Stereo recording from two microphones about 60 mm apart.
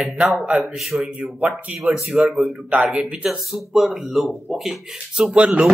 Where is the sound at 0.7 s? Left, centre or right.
Centre.